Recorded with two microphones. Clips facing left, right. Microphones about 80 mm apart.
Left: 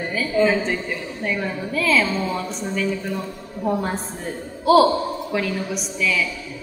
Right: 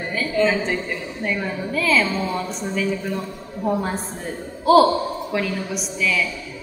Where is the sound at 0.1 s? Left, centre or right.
Centre.